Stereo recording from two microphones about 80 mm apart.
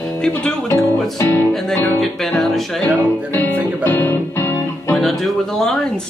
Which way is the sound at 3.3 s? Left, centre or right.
Left.